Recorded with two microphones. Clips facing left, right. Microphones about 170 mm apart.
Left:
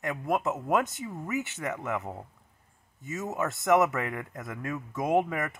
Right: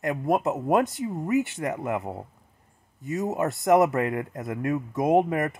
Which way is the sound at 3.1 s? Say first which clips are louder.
Right 6 dB; 35° right (ahead or behind).